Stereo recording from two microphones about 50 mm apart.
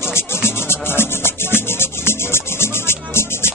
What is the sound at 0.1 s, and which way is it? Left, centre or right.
Music, left.